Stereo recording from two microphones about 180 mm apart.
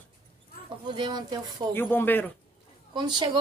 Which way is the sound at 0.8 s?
25° right (ahead or behind).